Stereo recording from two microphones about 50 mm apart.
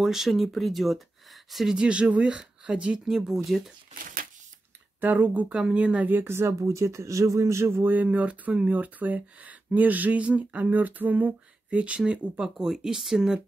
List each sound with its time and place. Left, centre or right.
0.0 s speech: centre
1.7 s speech: centre
3.1 s speech: centre
5.0 s speech: right
5.7 s speech: right
6.0 s speech: right
6.3 s speech: right
7.9 s speech: right
12.1 s speech: centre